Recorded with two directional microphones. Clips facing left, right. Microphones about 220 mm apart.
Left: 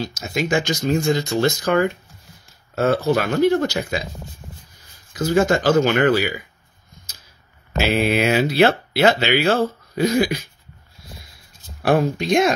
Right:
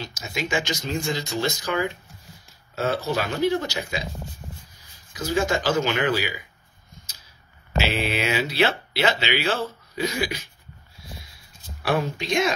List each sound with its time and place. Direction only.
0.0 s speech: 50° left (ahead or behind)
5.1 s speech: 50° left (ahead or behind)
7.7 s speech: 50° left (ahead or behind)
11.8 s speech: 50° left (ahead or behind)